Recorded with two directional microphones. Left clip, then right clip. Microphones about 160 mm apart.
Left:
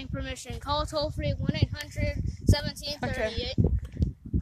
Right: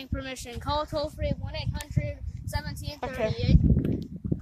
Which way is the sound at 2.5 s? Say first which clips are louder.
Left 5 dB; 5° right (ahead or behind).